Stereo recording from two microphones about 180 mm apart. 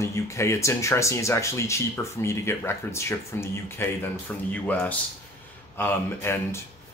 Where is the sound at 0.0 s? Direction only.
15° left (ahead or behind).